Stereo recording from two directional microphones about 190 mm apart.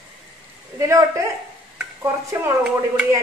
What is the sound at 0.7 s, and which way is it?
Speech, 15° right (ahead or behind).